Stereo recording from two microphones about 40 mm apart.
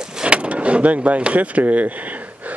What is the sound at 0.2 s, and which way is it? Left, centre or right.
Speech, right.